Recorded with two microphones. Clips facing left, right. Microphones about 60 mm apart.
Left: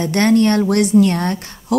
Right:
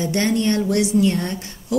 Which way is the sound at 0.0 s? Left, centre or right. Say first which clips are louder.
Left 6 dB; left.